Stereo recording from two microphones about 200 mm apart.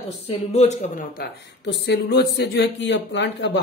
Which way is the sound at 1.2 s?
55° left (ahead or behind).